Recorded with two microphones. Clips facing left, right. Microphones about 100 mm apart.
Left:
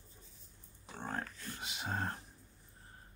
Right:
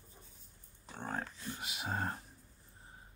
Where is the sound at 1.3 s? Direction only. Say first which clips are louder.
Right 3 dB; 15° right (ahead or behind).